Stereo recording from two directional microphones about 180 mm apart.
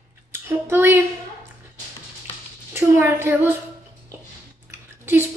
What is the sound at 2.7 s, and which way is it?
Speech, 10° right (ahead or behind).